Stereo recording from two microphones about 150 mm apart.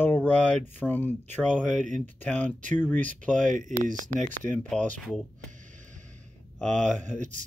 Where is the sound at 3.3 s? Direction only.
60° right (ahead or behind).